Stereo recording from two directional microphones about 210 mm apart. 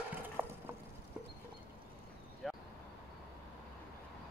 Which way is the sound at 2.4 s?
Centre (ahead or behind).